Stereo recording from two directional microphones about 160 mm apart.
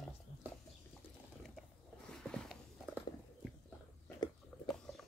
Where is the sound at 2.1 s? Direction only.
5° left (ahead or behind).